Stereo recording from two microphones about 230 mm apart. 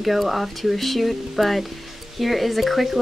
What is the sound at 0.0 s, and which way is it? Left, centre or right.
Speech, centre.